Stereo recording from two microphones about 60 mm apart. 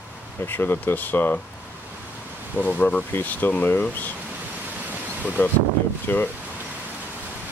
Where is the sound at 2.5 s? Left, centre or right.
Left.